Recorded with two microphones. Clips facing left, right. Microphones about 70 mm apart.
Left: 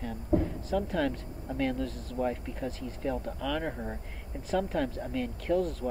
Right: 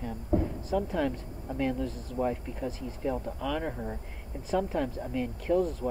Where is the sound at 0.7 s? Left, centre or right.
Centre.